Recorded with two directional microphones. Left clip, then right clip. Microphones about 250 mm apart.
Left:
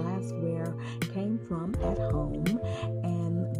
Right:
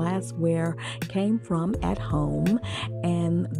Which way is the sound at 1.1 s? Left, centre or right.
Right.